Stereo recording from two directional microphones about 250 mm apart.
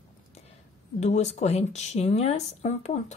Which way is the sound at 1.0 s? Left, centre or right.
Left.